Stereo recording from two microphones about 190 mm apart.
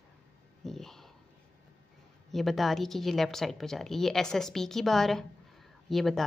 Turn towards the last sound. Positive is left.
turn(degrees=0)  # may be behind; listen again after turning